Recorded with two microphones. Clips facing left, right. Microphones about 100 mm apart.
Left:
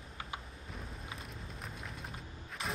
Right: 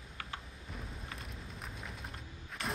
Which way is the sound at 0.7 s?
Centre (ahead or behind).